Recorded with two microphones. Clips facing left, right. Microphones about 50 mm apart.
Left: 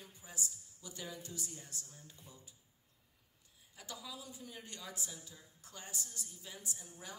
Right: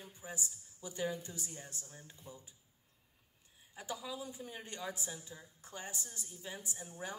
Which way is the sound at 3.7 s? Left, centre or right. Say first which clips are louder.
Right 6 dB; right.